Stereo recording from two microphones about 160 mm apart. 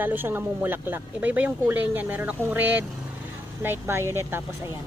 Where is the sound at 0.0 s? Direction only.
10° right (ahead or behind).